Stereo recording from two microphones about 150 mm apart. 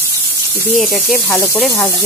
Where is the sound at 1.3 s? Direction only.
20° left (ahead or behind).